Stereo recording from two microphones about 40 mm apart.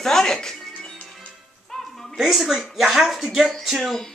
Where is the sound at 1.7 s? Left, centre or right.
Centre.